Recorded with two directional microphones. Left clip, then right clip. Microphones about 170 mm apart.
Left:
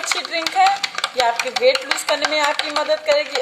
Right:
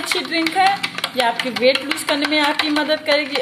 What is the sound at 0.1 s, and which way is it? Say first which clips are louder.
Speech: right 2 dB; 5° left (ahead or behind).